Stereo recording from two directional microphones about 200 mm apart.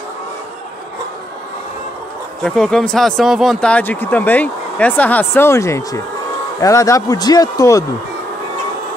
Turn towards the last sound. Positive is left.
turn(degrees=15)  # may be behind; listen again after turning